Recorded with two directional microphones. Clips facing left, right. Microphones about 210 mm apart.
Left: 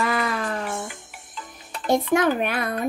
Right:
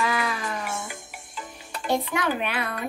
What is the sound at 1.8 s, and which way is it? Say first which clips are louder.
Speech: left 6 dB; 45° left (ahead or behind).